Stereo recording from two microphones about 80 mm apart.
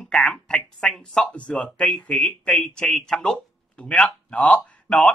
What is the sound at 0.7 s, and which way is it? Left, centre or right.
Speech, centre.